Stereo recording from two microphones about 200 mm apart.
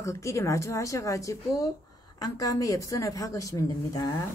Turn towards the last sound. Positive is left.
turn(degrees=15)  # may be behind; listen again after turning